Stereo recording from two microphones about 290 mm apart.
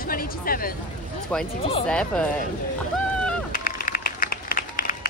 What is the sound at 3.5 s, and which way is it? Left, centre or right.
Applause, left.